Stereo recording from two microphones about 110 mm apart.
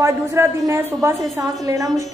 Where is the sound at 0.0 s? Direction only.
25° right (ahead or behind).